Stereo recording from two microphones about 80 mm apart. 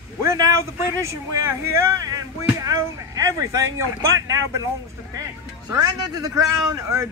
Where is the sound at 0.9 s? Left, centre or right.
Right.